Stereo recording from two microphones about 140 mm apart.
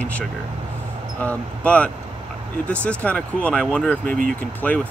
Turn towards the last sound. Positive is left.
turn(degrees=10)  # may be behind; listen again after turning